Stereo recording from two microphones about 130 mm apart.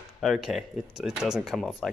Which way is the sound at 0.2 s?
Centre (ahead or behind).